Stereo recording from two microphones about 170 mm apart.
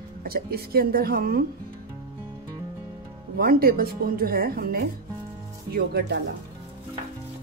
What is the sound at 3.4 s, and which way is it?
Speech, 60° right (ahead or behind).